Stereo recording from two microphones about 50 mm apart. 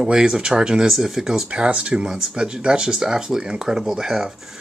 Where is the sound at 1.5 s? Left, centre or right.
Right.